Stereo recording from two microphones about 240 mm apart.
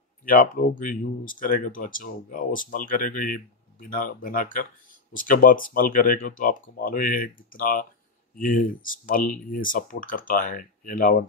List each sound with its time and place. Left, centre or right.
0.2 s speech: left